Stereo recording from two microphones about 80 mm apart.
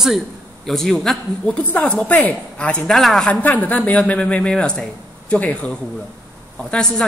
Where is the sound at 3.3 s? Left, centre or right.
Centre.